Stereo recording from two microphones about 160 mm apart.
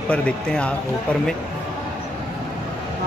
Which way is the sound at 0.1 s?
5° left (ahead or behind).